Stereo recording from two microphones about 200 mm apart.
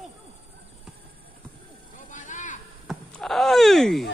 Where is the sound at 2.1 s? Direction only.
40° left (ahead or behind).